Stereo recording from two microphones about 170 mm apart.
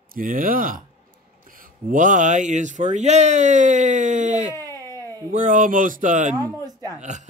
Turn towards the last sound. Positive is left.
turn(degrees=-45)  # may be behind; listen again after turning